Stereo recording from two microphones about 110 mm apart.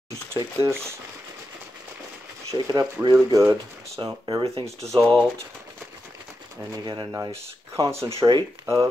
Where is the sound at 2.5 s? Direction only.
35° right (ahead or behind).